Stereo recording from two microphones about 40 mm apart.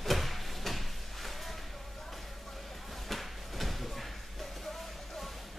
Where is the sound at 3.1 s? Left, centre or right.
Centre.